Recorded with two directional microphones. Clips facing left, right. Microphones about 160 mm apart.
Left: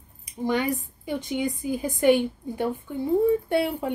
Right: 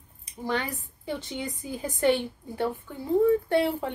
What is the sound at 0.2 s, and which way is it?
Speech, 15° left (ahead or behind).